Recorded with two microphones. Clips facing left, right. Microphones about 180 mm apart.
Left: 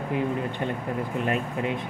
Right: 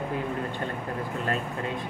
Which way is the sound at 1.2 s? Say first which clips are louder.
Left 3 dB; 20° left (ahead or behind).